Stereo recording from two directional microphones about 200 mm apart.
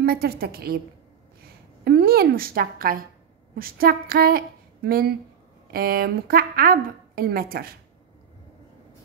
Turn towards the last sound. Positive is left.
turn(degrees=-50)  # may be behind; listen again after turning